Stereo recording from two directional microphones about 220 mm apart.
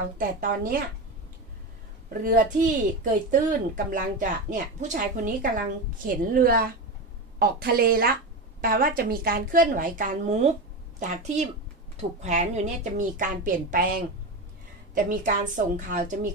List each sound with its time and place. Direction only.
0.2 s a woman's voice: 40° right (ahead or behind)
2.2 s a woman's voice: 35° right (ahead or behind)
15.2 s a woman's voice: 35° right (ahead or behind)